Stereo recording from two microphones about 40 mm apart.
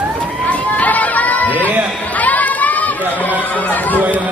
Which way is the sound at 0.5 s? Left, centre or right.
Left.